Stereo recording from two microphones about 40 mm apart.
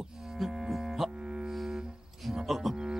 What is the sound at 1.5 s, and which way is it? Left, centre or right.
Music, centre.